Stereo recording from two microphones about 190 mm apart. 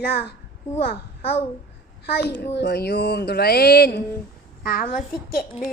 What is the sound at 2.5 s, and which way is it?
A woman's voice, 60° left (ahead or behind).